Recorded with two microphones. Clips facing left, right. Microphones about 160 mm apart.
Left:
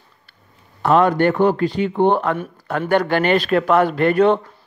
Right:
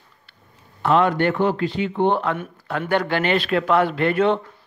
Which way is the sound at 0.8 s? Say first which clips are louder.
Left 3 dB; 40° left (ahead or behind).